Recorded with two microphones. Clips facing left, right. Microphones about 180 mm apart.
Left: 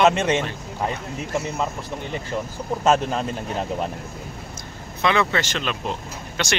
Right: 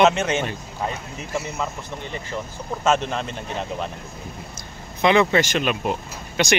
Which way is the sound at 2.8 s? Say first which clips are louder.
Left 1 dB; 35° left (ahead or behind).